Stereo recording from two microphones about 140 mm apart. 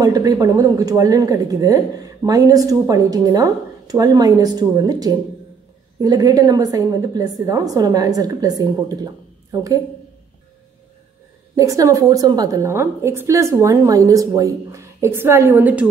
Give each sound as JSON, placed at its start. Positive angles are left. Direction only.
{"t": 0.0, "sound": "speech", "side_deg": -25}
{"t": 11.5, "sound": "speech", "side_deg": -25}